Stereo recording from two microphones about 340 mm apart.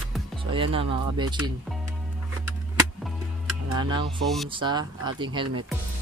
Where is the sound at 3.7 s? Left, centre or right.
Centre.